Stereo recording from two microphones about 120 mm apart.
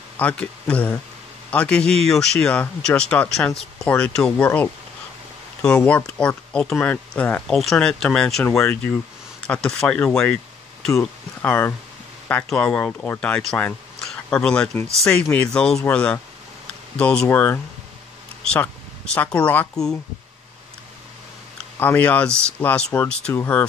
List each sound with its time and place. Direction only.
0.2 s speech: 10° left (ahead or behind)
5.6 s speech: 5° left (ahead or behind)
7.4 s speech: centre (ahead or behind)
9.5 s speech: 5° left (ahead or behind)
21.7 s speech: 15° left (ahead or behind)